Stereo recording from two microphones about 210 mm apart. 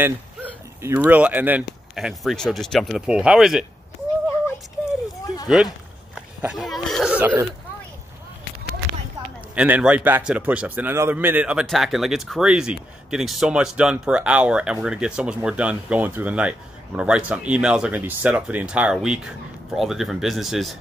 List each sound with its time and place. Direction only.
0.0 s speech: 10° right (ahead or behind)
5.2 s a sound: 20° left (ahead or behind)
6.1 s speech: centre (ahead or behind)
9.6 s a man's voice: 5° right (ahead or behind)